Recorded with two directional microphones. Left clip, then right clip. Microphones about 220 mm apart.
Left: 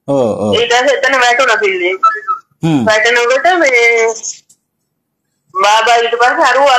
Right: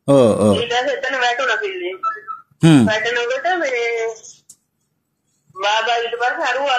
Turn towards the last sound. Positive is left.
turn(degrees=45)  # may be behind; listen again after turning